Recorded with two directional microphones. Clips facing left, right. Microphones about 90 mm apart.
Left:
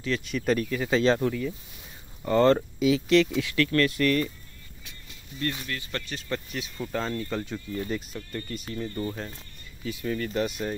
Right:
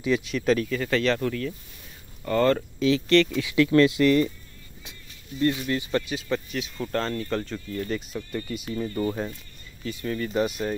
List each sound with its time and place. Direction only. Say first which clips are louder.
0.0 s speech: right 5 dB; 10° right (ahead or behind)
0.3 s speech: right 2 dB; 5° left (ahead or behind)
0.8 s speech: left 3 dB; 20° left (ahead or behind)
2.8 s speech: right 3 dB; 5° left (ahead or behind)
3.3 s speech: right 5 dB; 10° right (ahead or behind)
5.4 s speech: right 8 dB; 15° right (ahead or behind); by 7.8 s 5° left (ahead or behind)
8.2 s speech: right 4 dB; 5° right (ahead or behind)
9.0 s speech: right 6 dB; 15° right (ahead or behind)
9.8 s speech: right 1 dB; centre (ahead or behind)